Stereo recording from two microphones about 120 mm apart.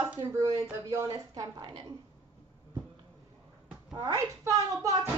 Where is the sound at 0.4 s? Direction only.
25° right (ahead or behind).